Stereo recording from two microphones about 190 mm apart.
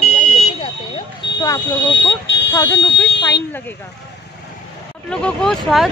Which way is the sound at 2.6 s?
70° left (ahead or behind).